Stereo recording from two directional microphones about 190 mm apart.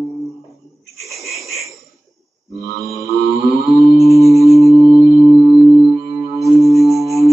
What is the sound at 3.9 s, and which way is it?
Music, 15° left (ahead or behind).